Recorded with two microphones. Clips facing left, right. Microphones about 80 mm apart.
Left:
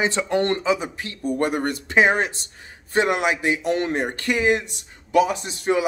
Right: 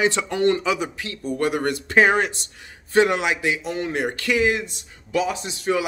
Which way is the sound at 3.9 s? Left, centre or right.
Left.